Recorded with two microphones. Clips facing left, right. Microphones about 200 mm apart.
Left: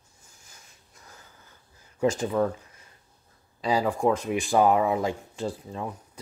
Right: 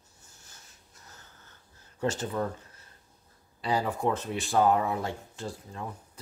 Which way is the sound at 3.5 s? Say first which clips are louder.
Left 4 dB; 90° left.